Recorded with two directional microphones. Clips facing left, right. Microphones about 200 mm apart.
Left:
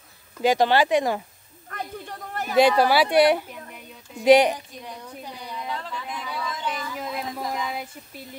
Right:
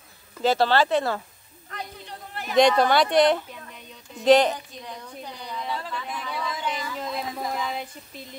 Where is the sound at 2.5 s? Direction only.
5° left (ahead or behind).